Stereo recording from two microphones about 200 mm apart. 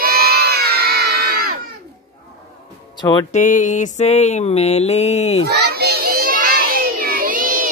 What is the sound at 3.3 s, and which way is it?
Mantra, 40° left (ahead or behind).